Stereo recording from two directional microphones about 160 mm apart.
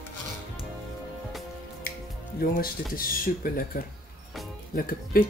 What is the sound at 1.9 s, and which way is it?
Music, 65° left (ahead or behind).